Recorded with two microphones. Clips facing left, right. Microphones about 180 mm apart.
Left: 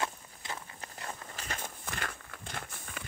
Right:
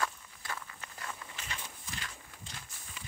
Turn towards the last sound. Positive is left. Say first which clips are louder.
# left 6 dB
turn(degrees=60)  # may be behind; listen again after turning